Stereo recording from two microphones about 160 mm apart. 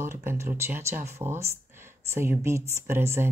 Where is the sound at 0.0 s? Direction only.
15° right (ahead or behind).